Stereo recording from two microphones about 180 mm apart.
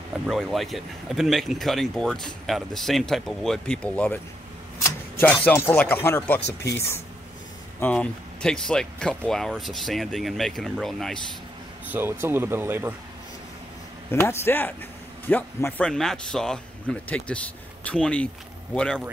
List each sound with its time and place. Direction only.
0.3 s speech: centre (ahead or behind)
5.2 s speech: 10° left (ahead or behind)
6.4 s speech: 65° left (ahead or behind)
7.8 s speech: 5° left (ahead or behind)
11.9 s speech: 10° right (ahead or behind)
14.1 s speech: 15° left (ahead or behind)